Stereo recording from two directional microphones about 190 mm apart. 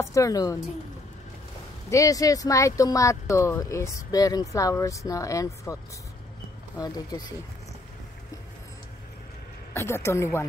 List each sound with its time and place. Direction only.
0.0 s speech: 15° left (ahead or behind)
1.9 s speech: 15° left (ahead or behind)
6.8 s speech: 20° left (ahead or behind)
9.8 s speech: 15° left (ahead or behind)